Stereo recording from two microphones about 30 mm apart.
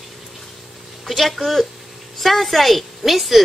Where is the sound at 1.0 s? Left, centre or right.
Centre.